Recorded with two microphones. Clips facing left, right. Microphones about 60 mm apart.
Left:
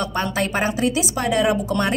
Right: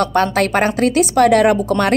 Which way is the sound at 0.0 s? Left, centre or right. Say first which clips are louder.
Right 7 dB; right.